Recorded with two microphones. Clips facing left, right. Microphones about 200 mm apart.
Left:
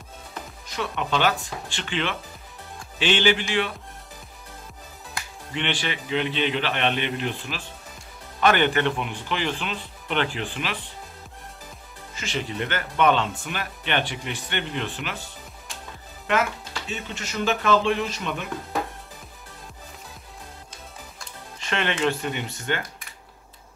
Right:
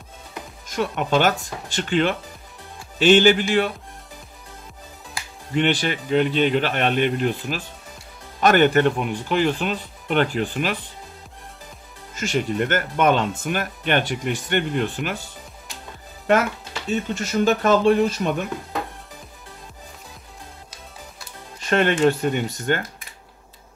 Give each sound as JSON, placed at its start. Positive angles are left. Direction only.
{"t": 0.7, "sound": "speech", "side_deg": -45}
{"t": 5.5, "sound": "speech", "side_deg": -40}
{"t": 12.2, "sound": "speech", "side_deg": -45}
{"t": 16.9, "sound": "speech", "side_deg": -45}
{"t": 21.5, "sound": "speech", "side_deg": -45}